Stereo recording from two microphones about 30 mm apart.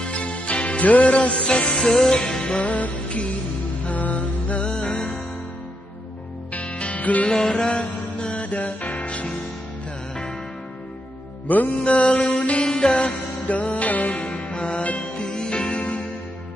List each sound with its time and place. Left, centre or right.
0.0 s music: left
1.9 s music: left
2.6 s music: left
4.6 s music: centre
6.6 s music: left
7.2 s music: left
8.2 s music: left
11.4 s music: left
11.8 s mantra: left
12.6 s music: left
14.3 s music: left
15.0 s music: left
15.8 s music: left